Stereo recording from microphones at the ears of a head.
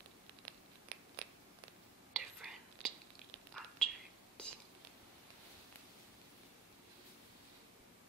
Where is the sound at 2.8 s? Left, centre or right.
Right.